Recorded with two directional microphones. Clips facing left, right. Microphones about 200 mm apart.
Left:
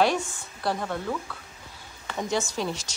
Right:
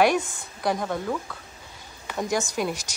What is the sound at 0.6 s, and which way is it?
Speech, 15° right (ahead or behind).